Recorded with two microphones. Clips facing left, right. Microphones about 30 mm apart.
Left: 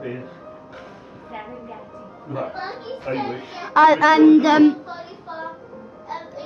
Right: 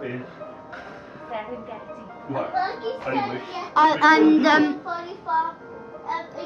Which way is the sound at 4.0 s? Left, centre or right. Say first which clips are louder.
Left 3 dB; right.